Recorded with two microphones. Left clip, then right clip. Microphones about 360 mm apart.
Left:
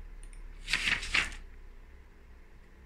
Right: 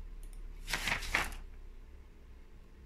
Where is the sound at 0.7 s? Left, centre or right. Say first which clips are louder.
Left 5 dB; centre.